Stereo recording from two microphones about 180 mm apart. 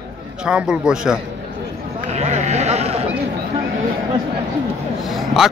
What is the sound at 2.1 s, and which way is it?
Sheep, 40° right (ahead or behind).